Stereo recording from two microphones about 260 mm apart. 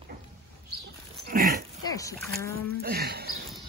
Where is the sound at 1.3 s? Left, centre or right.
Right.